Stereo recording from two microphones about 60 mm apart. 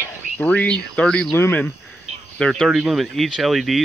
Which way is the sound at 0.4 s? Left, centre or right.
Left.